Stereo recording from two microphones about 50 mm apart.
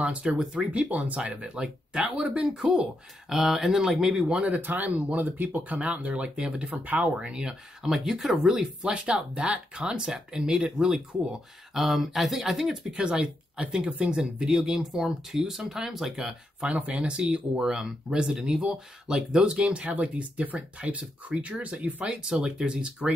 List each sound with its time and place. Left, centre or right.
0.0 s speech: right
3.3 s speech: centre
4.6 s speech: right; by 8.6 s centre
8.8 s speech: centre
11.7 s speech: centre
12.9 s speech: centre
16.7 s speech: right
17.3 s speech: centre; by 22.0 s right
22.0 s speech: centre